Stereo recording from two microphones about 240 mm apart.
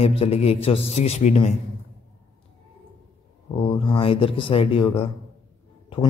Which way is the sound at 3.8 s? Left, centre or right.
Centre.